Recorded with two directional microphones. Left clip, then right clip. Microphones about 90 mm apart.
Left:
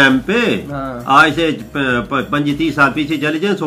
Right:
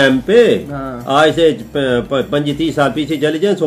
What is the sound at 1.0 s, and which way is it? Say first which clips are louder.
A man's voice: even; 55° right (ahead or behind).